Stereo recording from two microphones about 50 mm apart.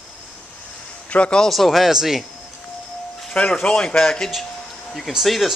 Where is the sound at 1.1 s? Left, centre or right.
Left.